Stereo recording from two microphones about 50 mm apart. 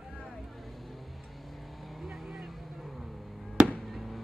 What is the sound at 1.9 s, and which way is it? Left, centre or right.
Vehicle, centre.